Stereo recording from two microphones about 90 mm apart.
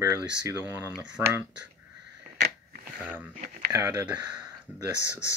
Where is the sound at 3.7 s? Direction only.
35° right (ahead or behind).